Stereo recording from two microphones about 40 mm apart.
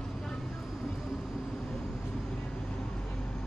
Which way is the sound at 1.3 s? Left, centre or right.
Centre.